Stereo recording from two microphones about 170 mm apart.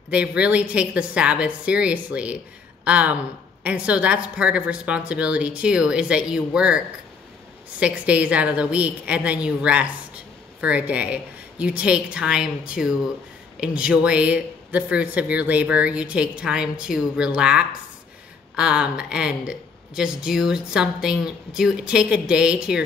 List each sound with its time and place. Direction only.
0.1 s speech: 5° right (ahead or behind)
7.8 s speech: 10° right (ahead or behind)